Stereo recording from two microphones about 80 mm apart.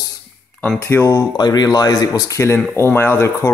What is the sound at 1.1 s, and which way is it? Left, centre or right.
Speech, left.